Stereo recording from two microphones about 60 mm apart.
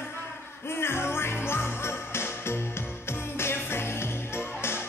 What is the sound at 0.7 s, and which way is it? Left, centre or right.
Music, left.